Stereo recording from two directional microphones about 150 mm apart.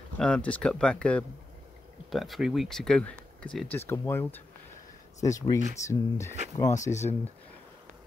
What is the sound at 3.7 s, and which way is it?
Speech, 15° left (ahead or behind).